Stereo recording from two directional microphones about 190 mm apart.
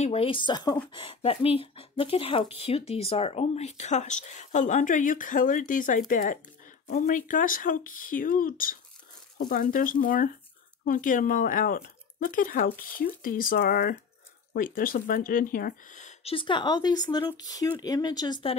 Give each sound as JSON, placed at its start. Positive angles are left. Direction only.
{"t": 0.0, "sound": "speech", "side_deg": 30}